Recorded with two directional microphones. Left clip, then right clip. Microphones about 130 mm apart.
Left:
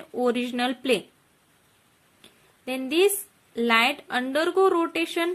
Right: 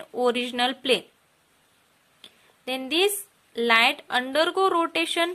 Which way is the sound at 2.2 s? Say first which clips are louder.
Right 2 dB; 25° right (ahead or behind).